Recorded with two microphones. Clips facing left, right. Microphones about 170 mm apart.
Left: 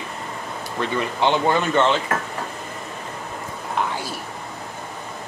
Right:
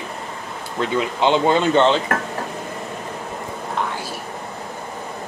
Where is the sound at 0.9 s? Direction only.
15° right (ahead or behind).